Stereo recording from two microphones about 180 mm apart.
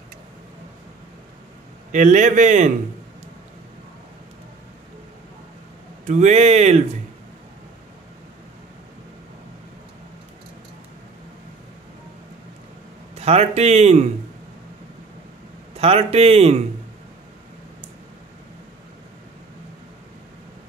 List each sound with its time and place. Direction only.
1.9 s a man's voice: 45° right (ahead or behind)
6.0 s speech: 40° right (ahead or behind)
13.1 s speech: 35° right (ahead or behind)
15.7 s speech: 35° right (ahead or behind)